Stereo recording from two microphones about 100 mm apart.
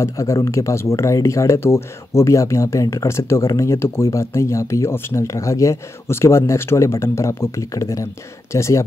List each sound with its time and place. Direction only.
0.0 s speech: 30° left (ahead or behind)